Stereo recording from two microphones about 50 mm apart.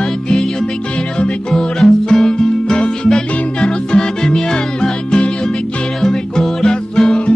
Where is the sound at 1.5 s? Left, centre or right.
Centre.